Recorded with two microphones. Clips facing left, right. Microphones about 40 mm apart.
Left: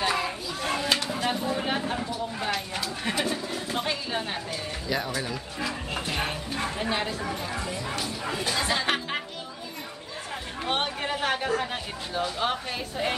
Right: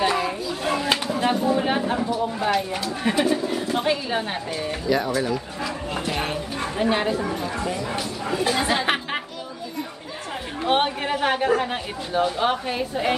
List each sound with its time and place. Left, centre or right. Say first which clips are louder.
0.0 s children playing: right 5 dB; centre
0.8 s a sound: right 3 dB; centre
1.3 s a man's voice: right 7 dB; centre
4.8 s a man's voice: right 8 dB; centre
10.7 s a man's voice: right 7 dB; centre